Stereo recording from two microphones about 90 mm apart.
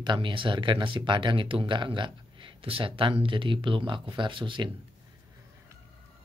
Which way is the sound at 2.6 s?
80° right.